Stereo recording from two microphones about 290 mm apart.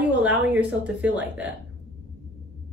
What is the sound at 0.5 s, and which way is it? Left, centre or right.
A woman's voice, centre.